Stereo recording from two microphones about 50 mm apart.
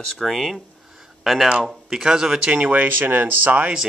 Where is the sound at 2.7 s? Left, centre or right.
Right.